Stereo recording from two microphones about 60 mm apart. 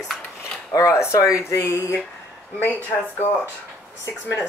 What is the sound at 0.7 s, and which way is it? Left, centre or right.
Speech, left.